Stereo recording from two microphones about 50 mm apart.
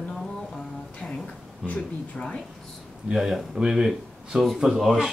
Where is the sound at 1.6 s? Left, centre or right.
Left.